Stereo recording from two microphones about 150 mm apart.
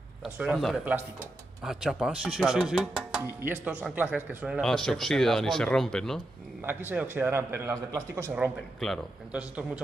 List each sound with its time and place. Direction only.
0.2 s speech: 5° right (ahead or behind)
4.6 s speech: 5° left (ahead or behind)
6.6 s a man's voice: 15° right (ahead or behind)
8.7 s speech: centre (ahead or behind)